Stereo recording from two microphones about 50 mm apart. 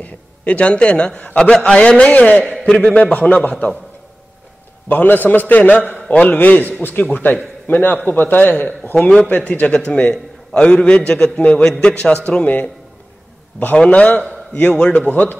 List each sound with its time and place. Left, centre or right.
0.0 s a man's voice: left
4.8 s a man's voice: left
9.1 s a man's voice: left
13.7 s a man's voice: left